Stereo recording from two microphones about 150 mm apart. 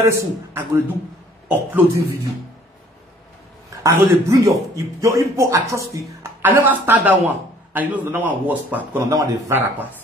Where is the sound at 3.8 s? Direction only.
20° right (ahead or behind).